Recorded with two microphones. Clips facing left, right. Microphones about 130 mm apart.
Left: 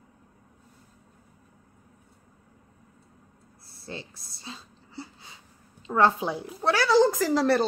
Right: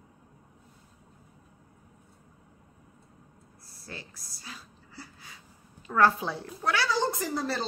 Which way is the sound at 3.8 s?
25° left (ahead or behind).